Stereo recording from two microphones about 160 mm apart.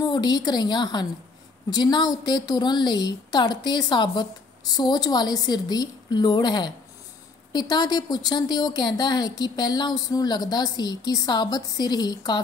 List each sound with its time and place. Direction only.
0.1 s a woman's voice: 25° left (ahead or behind)